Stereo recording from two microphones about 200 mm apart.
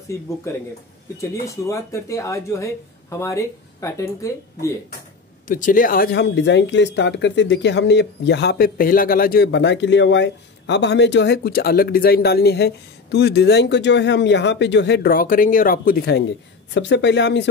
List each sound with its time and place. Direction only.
0.1 s speech: 15° left (ahead or behind)
1.7 s speech: 15° left (ahead or behind)
5.5 s speech: 45° left (ahead or behind); by 17.5 s 60° left (ahead or behind)